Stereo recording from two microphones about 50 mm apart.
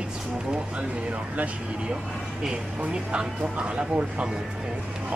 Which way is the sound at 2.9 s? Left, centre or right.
Centre.